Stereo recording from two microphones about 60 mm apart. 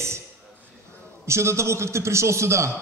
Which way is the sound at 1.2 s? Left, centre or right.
Right.